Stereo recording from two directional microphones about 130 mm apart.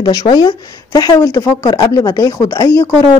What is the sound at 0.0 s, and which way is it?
Speech, 30° left (ahead or behind).